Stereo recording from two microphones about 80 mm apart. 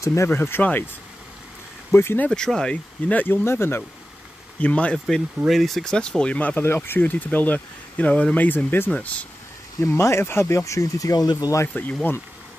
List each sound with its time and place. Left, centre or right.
0.0 s speech: left
0.3 s speech: left
2.0 s speech: left
2.2 s speech: centre
3.4 s speech: left
4.6 s speech: centre
4.9 s speech: centre
6.6 s speech: left
9.8 s speech: left
11.7 s speech: left